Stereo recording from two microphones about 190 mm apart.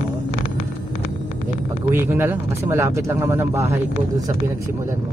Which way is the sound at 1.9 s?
10° right (ahead or behind).